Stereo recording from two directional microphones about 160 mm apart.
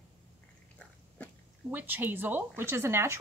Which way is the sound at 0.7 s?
5° left (ahead or behind).